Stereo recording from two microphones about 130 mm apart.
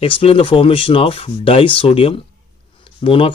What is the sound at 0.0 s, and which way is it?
Speech, 45° left (ahead or behind).